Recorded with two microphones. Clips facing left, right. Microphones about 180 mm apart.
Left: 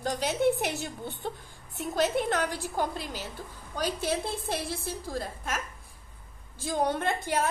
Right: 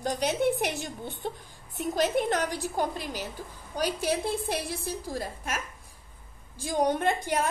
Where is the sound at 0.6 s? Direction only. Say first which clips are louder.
Right 1 dB; 15° right (ahead or behind).